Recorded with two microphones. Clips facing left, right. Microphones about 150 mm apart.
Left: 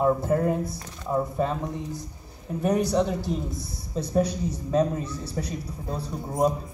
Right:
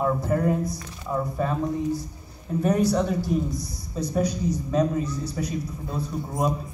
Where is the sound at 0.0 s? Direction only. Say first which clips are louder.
Left 1 dB; 25° left (ahead or behind).